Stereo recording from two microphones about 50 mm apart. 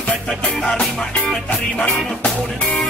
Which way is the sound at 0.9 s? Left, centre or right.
Centre.